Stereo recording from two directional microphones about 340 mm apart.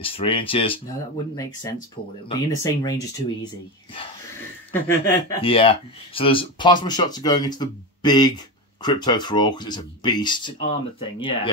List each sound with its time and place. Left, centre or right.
0.0 s speech: centre
4.8 s speech: centre